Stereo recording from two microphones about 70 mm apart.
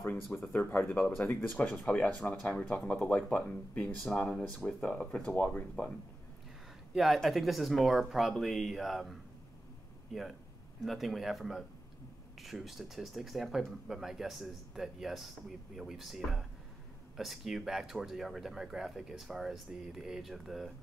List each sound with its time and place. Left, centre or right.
0.5 s speech: left
1.9 s speech: centre
6.9 s speech: centre
10.8 s speech: centre